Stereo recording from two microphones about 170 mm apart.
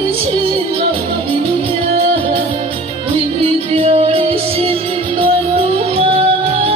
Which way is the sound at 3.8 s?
35° right (ahead or behind).